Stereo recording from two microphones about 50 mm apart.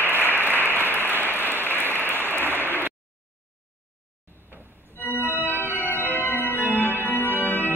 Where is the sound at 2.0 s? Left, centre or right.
Left.